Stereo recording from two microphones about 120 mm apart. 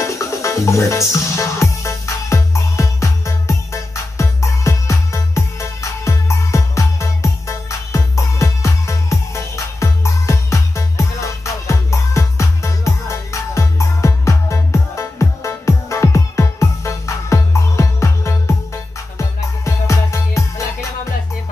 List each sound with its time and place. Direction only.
0.0 s music: 25° left (ahead or behind)